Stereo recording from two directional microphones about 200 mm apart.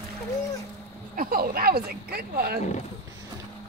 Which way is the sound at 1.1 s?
45° right (ahead or behind).